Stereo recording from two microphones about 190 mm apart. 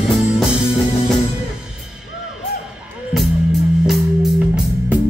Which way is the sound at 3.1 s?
Centre (ahead or behind).